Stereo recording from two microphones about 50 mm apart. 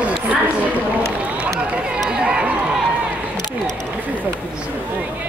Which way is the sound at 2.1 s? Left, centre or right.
Centre.